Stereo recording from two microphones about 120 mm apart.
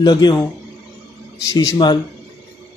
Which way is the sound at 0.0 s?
35° left (ahead or behind).